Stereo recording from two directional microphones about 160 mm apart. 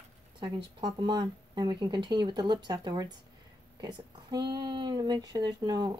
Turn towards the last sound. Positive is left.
turn(degrees=-25)  # may be behind; listen again after turning